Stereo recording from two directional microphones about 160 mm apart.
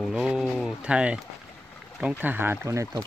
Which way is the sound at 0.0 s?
5° right (ahead or behind).